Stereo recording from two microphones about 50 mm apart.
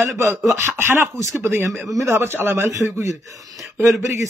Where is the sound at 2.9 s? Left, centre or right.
Right.